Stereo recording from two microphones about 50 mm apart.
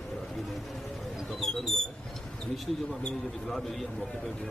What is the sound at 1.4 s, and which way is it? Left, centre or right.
Mouse, centre.